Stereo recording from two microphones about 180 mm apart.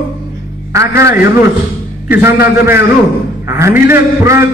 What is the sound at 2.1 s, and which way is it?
Speech, 10° right (ahead or behind).